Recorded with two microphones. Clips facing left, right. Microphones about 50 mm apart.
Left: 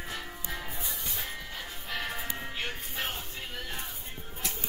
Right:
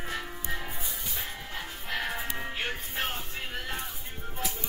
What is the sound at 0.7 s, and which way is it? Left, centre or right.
Music, centre.